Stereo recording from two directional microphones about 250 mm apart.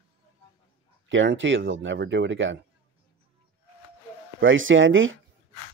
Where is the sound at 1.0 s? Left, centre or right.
Right.